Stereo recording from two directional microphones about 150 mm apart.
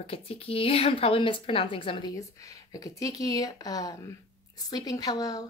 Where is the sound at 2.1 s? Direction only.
25° left (ahead or behind).